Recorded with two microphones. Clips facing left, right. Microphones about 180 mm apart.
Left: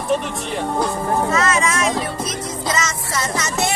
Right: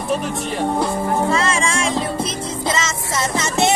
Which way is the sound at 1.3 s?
30° right (ahead or behind).